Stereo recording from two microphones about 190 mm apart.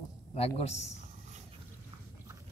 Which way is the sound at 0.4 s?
35° left (ahead or behind).